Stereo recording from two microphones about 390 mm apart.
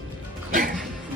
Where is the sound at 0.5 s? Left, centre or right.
Right.